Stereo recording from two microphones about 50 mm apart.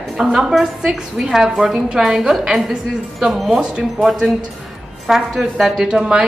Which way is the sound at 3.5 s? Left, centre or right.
Centre.